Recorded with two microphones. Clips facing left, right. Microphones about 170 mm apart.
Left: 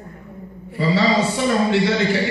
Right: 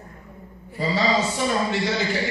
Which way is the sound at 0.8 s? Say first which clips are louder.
Left 4 dB; 65° left (ahead or behind).